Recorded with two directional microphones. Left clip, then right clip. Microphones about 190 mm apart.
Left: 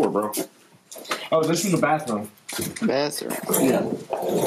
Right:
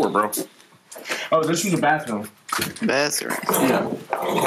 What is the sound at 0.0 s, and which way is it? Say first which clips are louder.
Speech: right 2 dB; centre (ahead or behind).